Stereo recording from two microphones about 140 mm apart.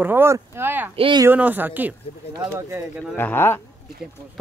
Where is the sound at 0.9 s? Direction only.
40° right (ahead or behind).